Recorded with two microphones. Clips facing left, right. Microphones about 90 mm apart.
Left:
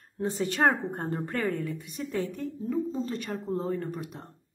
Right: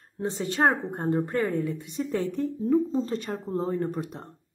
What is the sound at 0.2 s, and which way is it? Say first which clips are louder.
A woman's voice: right 1 dB; 25° right (ahead or behind).